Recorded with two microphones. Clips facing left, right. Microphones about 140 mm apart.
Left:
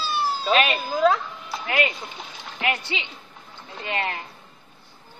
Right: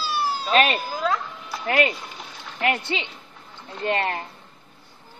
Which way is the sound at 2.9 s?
40° right (ahead or behind).